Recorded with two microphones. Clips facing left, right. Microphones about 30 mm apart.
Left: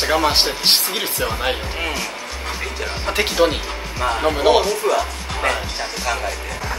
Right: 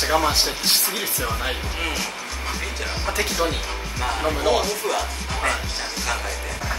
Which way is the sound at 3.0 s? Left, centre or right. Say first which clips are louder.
Left 6 dB; left.